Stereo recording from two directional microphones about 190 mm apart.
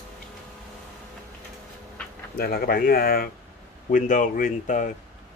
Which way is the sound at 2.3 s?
55° left (ahead or behind).